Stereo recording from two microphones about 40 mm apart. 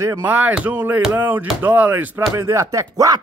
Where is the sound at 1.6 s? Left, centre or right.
Right.